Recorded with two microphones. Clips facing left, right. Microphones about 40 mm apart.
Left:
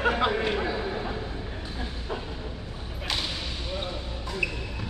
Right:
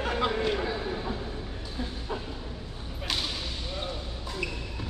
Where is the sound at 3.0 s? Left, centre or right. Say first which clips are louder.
Left 1 dB; centre.